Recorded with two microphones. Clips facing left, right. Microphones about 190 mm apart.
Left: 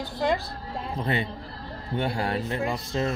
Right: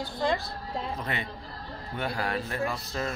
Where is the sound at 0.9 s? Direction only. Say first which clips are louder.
Left 6 dB; 30° left (ahead or behind).